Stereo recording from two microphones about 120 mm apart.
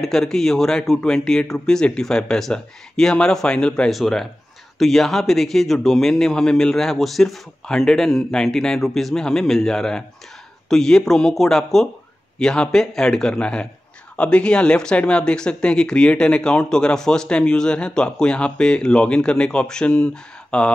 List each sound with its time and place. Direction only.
0.0 s a man's voice: 5° left (ahead or behind)